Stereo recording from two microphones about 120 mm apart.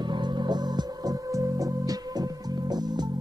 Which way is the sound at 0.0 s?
40° right (ahead or behind).